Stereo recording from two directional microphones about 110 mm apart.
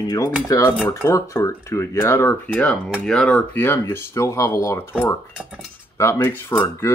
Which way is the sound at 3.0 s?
5° left (ahead or behind).